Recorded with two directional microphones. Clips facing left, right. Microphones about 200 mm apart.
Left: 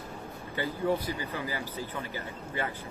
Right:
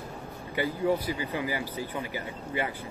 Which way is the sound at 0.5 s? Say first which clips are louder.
Right 2 dB; 15° right (ahead or behind).